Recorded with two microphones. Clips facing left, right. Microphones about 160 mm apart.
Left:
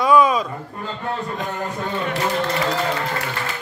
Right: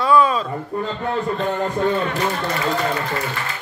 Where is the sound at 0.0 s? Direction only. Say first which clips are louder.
Left 1 dB; 15° left (ahead or behind).